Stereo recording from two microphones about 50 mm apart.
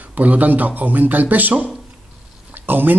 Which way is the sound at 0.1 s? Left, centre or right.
Right.